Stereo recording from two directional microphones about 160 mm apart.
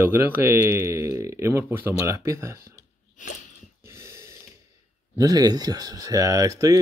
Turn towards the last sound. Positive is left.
turn(degrees=-20)  # may be behind; listen again after turning